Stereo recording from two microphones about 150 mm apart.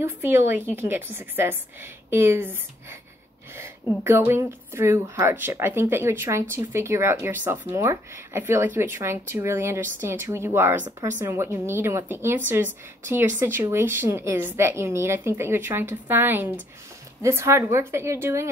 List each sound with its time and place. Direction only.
0.0 s speech: 15° right (ahead or behind)
4.0 s speech: 15° right (ahead or behind)